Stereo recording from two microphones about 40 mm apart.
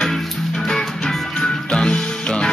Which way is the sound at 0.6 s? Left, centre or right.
Centre.